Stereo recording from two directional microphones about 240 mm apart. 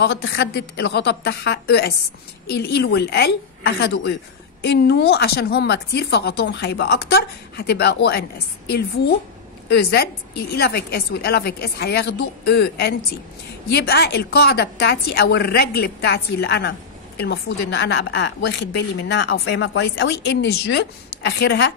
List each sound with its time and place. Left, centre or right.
0.0 s a woman's voice: left